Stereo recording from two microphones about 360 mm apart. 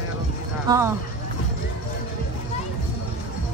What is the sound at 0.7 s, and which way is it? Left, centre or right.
Speech, centre.